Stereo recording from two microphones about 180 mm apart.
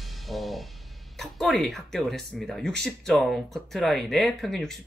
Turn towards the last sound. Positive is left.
turn(degrees=0)  # may be behind; listen again after turning